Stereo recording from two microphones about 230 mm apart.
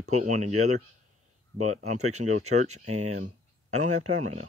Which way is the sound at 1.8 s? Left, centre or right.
Right.